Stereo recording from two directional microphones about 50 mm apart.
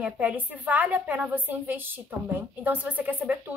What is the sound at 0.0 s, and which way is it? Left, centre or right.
Speech, right.